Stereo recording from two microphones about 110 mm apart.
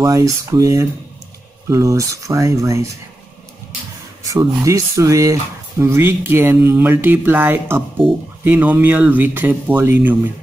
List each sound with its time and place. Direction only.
0.0 s speech: 30° right (ahead or behind)
4.2 s speech: 30° right (ahead or behind)
8.0 s speech: 5° left (ahead or behind)
8.5 s speech: 15° right (ahead or behind)